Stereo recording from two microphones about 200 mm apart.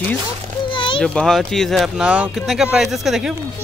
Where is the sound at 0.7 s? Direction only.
25° left (ahead or behind).